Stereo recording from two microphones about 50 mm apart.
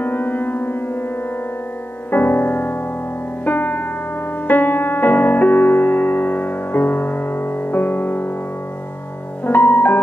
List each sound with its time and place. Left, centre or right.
0.0 s music: left
2.0 s music: left
9.5 s music: left